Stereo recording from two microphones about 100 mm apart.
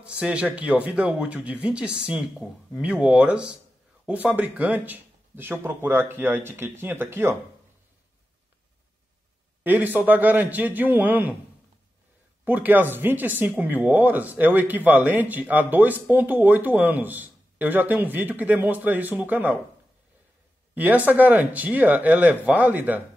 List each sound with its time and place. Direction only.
0.0 s speech: 10° right (ahead or behind)
9.6 s speech: 20° right (ahead or behind)
12.4 s speech: 15° right (ahead or behind)
20.7 s speech: 15° right (ahead or behind)